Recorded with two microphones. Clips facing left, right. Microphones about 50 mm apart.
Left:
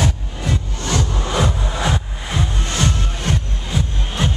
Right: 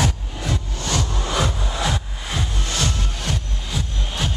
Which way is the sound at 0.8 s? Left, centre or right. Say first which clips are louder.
Left 3 dB; left.